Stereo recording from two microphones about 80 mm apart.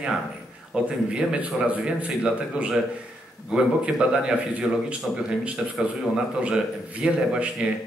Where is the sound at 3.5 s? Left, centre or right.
Centre.